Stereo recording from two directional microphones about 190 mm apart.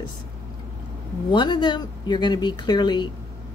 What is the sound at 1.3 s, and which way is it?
A woman's voice, 25° left (ahead or behind).